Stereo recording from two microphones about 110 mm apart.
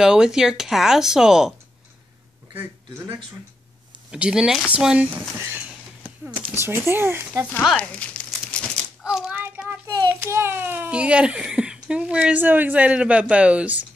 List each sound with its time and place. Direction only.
0.0 s speech: 5° right (ahead or behind)
4.1 s a child's voice: 5° right (ahead or behind)
5.4 s a sound: 15° right (ahead or behind)
6.3 s speech: 20° right (ahead or behind)
7.7 s crumpling: 10° left (ahead or behind)
9.0 s child singing: 10° right (ahead or behind)
10.1 s a child's voice: 25° right (ahead or behind)